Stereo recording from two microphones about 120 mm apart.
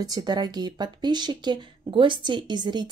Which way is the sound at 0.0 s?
35° right (ahead or behind).